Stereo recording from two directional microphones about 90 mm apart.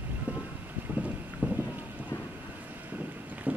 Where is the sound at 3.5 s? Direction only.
15° right (ahead or behind).